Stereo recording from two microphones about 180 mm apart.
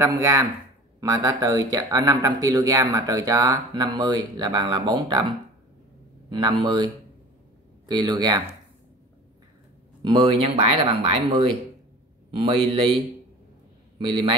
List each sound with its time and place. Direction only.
0.0 s speech: 20° right (ahead or behind)
6.3 s speech: 25° right (ahead or behind)
10.0 s speech: 30° right (ahead or behind)
12.3 s speech: 30° right (ahead or behind)
13.9 s a man's voice: 25° right (ahead or behind)